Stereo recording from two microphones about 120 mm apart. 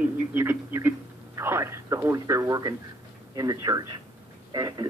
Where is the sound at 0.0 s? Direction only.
15° right (ahead or behind).